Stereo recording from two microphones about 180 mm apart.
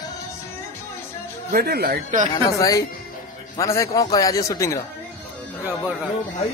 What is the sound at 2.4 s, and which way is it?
Speech, 20° left (ahead or behind).